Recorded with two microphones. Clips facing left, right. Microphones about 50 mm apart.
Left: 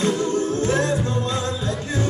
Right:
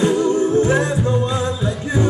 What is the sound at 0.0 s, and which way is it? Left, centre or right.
Music, centre.